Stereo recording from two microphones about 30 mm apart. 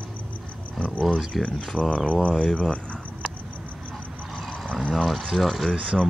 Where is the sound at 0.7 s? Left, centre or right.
Left.